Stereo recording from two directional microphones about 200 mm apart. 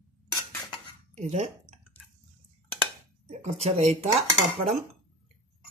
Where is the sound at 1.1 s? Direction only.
35° right (ahead or behind).